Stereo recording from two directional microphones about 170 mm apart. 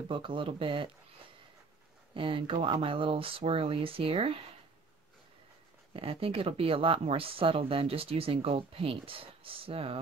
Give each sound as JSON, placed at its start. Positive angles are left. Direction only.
{"t": 0.1, "sound": "speech", "side_deg": -30}
{"t": 2.1, "sound": "speech", "side_deg": -30}
{"t": 5.9, "sound": "speech", "side_deg": -35}